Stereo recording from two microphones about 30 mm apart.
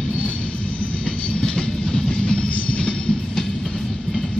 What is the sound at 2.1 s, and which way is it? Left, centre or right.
Music, left.